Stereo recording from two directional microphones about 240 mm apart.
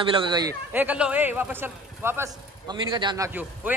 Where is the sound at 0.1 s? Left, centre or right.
Centre.